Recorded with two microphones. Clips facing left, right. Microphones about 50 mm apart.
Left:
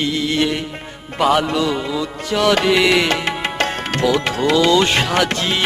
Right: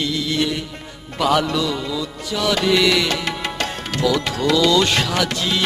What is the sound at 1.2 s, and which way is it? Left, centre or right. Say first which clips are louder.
Music: left 2 dB; left.